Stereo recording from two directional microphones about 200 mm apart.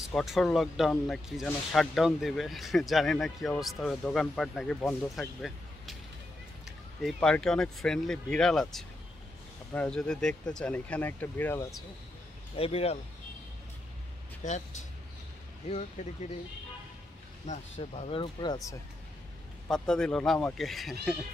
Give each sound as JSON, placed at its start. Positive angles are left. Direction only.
{"t": 0.1, "sound": "speech", "side_deg": 0}
{"t": 12.5, "sound": "speech", "side_deg": 30}
{"t": 14.4, "sound": "speech", "side_deg": 35}
{"t": 17.5, "sound": "speech", "side_deg": 30}
{"t": 19.7, "sound": "speech", "side_deg": 5}